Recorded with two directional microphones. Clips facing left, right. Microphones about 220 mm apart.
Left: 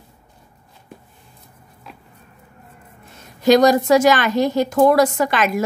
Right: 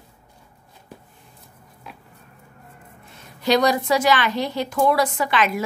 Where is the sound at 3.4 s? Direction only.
45° left (ahead or behind).